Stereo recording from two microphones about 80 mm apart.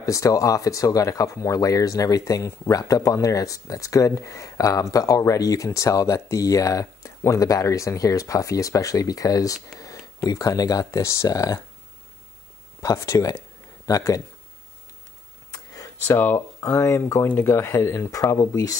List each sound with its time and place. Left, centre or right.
0.0 s speech: left
12.8 s speech: left
15.5 s a sound: left
16.1 s speech: left